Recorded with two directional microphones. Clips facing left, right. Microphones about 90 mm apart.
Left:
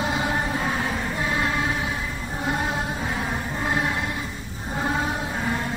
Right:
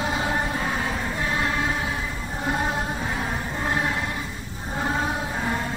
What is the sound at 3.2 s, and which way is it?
Music, 5° left (ahead or behind).